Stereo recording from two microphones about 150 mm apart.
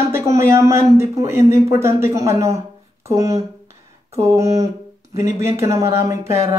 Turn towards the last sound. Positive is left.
turn(degrees=-20)  # may be behind; listen again after turning